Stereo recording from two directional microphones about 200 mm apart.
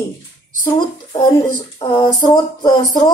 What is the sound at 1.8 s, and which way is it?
Speech, 20° left (ahead or behind).